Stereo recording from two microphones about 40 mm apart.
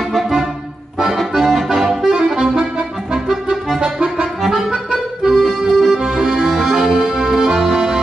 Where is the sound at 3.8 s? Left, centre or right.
Right.